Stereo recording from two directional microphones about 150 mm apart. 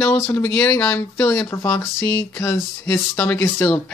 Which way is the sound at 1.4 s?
20° left (ahead or behind).